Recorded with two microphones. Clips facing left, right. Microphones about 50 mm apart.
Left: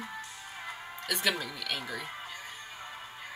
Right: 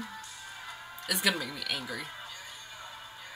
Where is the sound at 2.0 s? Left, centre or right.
Left.